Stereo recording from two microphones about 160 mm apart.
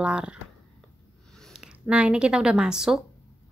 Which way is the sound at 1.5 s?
5° right (ahead or behind).